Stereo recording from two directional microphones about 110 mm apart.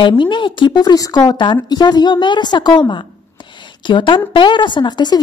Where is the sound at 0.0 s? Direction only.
50° left (ahead or behind).